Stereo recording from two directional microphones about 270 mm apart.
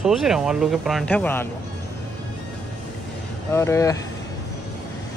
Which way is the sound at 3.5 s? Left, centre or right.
Centre.